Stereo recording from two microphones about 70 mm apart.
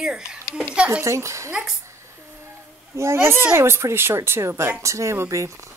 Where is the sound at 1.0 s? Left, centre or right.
Right.